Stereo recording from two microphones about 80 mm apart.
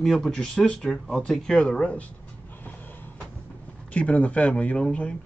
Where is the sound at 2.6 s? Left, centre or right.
Left.